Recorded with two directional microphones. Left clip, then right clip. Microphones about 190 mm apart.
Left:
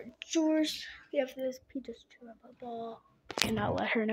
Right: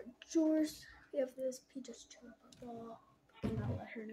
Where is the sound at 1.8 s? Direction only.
25° left (ahead or behind).